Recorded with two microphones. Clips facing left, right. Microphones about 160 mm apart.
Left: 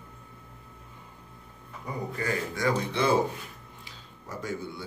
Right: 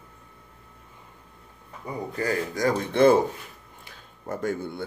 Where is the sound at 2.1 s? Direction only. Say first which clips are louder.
Right 5 dB; 40° right (ahead or behind).